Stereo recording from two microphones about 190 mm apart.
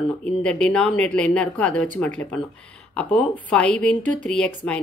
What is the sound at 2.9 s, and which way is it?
A woman's voice, 5° left (ahead or behind).